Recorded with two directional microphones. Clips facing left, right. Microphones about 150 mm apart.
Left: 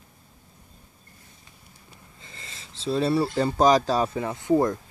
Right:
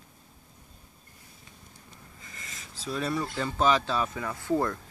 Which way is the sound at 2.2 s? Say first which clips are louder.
Left 1 dB; 30° left (ahead or behind).